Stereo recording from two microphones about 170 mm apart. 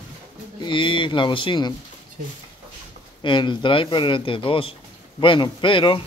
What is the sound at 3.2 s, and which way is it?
Speech, 30° left (ahead or behind).